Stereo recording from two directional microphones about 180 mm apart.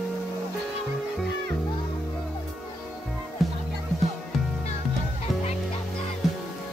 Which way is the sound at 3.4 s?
Centre (ahead or behind).